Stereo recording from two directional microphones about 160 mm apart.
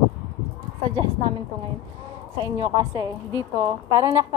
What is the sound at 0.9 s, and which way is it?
Speech, 30° right (ahead or behind).